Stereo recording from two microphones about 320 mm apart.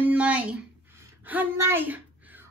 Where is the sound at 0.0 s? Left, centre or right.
Centre.